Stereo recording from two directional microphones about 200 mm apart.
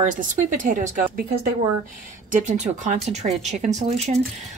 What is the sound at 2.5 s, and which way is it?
Speech, 35° right (ahead or behind).